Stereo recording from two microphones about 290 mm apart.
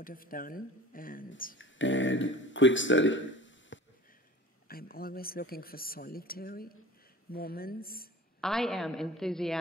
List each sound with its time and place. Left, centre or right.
0.0 s speech: left
8.4 s a woman's voice: centre